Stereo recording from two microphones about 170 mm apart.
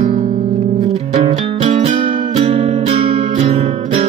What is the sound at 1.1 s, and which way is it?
Music, 40° right (ahead or behind).